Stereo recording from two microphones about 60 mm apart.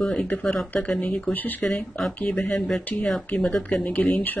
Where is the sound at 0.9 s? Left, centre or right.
Left.